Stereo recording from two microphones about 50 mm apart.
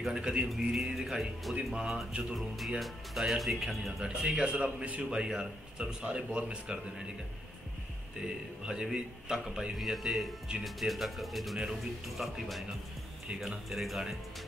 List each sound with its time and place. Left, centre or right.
0.0 s a man's voice: centre; by 5.2 s right
5.2 s speech: centre
8.6 s a man's voice: centre